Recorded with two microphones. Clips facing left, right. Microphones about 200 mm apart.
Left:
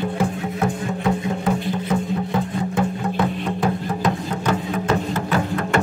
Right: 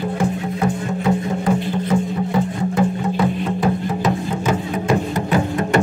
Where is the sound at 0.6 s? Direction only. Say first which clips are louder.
Right 1 dB; centre (ahead or behind).